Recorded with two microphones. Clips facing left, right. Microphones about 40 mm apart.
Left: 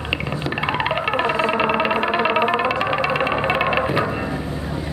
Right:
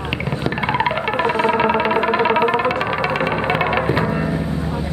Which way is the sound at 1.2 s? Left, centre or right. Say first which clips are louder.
Right 4 dB; left.